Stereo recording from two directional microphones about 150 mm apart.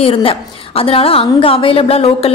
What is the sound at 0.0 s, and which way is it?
A woman's voice, 40° left (ahead or behind).